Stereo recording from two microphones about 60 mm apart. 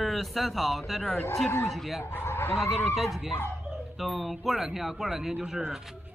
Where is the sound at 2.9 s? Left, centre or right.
Centre.